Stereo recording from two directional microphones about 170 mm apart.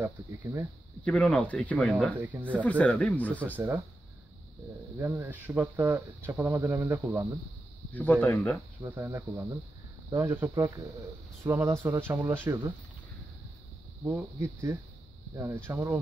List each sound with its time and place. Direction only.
0.0 s speech: 15° right (ahead or behind)
1.0 s speech: 10° left (ahead or behind)
2.1 s speech: 10° right (ahead or behind)
2.6 s speech: 10° left (ahead or behind)
3.5 s speech: 10° right (ahead or behind)
4.9 s speech: 15° right (ahead or behind)
7.9 s speech: 10° left (ahead or behind)
8.8 s speech: 15° right (ahead or behind)
14.0 s speech: 15° right (ahead or behind)